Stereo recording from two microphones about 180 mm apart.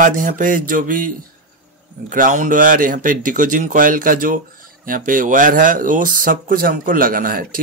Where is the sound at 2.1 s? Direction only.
45° right (ahead or behind).